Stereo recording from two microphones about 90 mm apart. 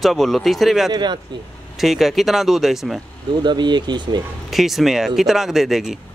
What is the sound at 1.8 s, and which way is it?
Speech, centre (ahead or behind).